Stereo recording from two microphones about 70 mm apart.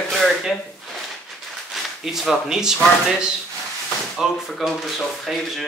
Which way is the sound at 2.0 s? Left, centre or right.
Centre.